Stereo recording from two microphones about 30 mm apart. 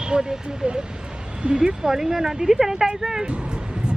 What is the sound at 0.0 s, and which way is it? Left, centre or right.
Speech, right.